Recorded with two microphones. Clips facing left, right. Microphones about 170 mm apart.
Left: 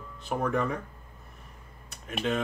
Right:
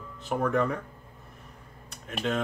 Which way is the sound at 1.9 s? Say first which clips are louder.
Even; centre (ahead or behind).